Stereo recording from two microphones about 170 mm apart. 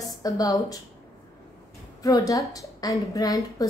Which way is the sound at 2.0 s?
20° left (ahead or behind).